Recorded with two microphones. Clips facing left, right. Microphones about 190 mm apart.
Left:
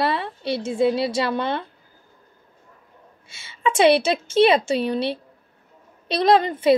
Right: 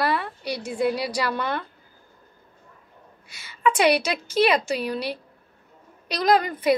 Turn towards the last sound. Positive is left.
turn(degrees=25)  # may be behind; listen again after turning